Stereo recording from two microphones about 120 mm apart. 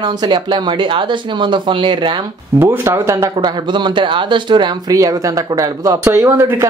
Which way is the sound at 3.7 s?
40° right (ahead or behind).